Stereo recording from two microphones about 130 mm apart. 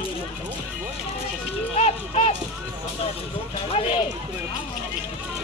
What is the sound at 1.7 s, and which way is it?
Speech, 55° left (ahead or behind).